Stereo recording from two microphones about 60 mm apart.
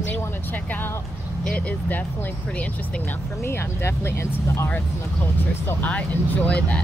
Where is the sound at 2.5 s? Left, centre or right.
Left.